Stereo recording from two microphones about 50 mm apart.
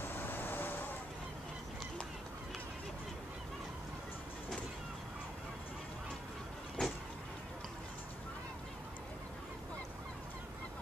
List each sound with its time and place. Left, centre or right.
0.0 s vehicle: left
6.8 s vehicle: centre